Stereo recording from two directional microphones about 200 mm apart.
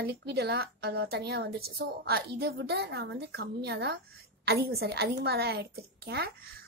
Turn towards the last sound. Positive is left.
turn(degrees=-55)  # may be behind; listen again after turning